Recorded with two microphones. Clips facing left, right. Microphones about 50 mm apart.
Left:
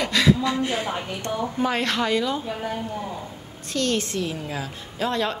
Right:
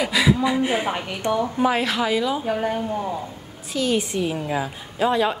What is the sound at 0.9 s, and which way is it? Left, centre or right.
Speech, right.